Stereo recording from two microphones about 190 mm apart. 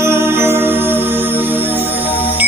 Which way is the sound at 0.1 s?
10° right (ahead or behind).